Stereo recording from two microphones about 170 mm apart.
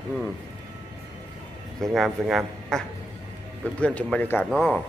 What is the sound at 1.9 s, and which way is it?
Speech, centre (ahead or behind).